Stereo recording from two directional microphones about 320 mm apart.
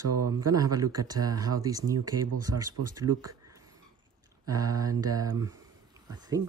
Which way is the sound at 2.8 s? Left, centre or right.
Right.